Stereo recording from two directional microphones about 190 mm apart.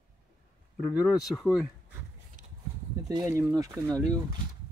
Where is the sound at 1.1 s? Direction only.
Centre (ahead or behind).